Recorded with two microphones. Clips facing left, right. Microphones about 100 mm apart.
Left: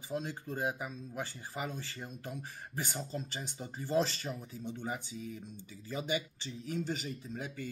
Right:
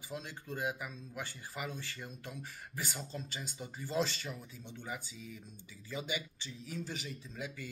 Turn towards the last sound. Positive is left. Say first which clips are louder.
# left 5 dB
turn(degrees=45)  # may be behind; listen again after turning